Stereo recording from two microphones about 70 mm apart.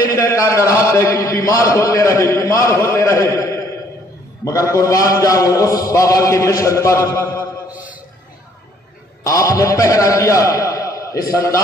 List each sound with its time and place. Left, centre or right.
0.1 s a man's voice: left
2.7 s mantra: left
3.3 s a sound: left
4.5 s mantra: left
7.3 s a sound: right
9.2 s a man's voice: left